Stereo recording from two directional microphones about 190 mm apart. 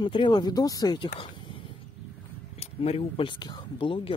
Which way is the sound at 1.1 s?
25° left (ahead or behind).